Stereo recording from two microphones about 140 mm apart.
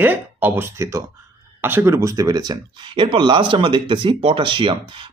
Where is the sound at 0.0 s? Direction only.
15° right (ahead or behind).